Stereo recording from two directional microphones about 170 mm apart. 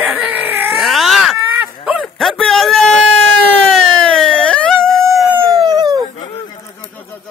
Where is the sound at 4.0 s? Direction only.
5° left (ahead or behind).